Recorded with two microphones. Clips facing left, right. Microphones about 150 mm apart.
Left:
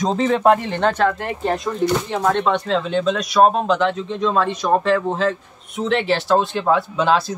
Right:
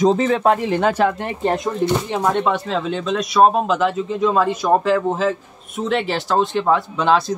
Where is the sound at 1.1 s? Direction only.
20° right (ahead or behind).